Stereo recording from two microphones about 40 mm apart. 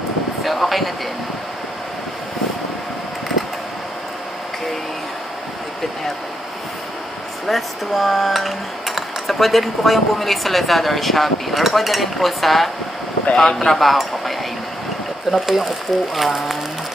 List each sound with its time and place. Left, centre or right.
0.4 s a sound: centre
7.4 s dishes: centre
13.3 s speech: left
13.7 s dishes: centre
15.3 s speech: centre